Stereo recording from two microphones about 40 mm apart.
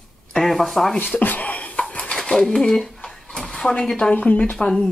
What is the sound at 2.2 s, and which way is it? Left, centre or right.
Speech, centre.